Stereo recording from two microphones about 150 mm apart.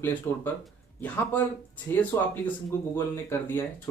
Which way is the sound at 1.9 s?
15° left (ahead or behind).